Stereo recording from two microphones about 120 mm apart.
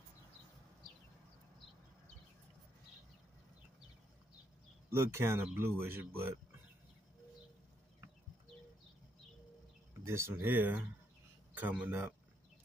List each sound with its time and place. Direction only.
4.9 s speech: 20° right (ahead or behind)
10.0 s speech: 20° right (ahead or behind)